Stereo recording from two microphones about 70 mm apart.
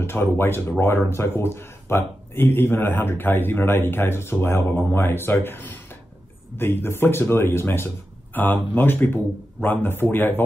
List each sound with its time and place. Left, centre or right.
0.0 s a man's voice: left